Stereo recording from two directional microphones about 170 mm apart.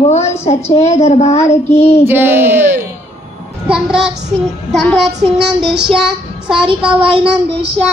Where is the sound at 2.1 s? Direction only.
10° right (ahead or behind).